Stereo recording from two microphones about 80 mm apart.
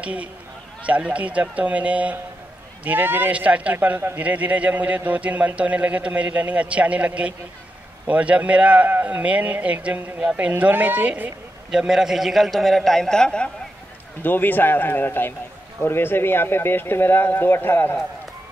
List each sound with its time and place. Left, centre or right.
0.0 s a man's voice: centre
11.7 s a man's voice: centre
14.2 s speech: left